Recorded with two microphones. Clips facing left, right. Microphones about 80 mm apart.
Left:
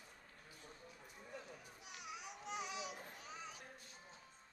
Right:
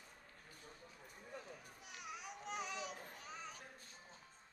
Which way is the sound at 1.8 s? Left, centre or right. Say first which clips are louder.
Even; right.